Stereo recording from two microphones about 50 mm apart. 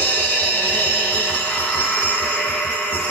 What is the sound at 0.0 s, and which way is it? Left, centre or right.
Music, left.